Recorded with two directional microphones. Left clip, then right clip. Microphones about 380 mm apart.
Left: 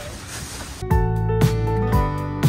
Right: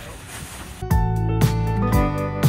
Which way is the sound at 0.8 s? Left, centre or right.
Centre.